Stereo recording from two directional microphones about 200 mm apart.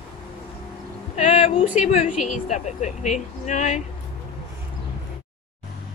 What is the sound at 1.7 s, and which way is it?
Speech, 35° left (ahead or behind).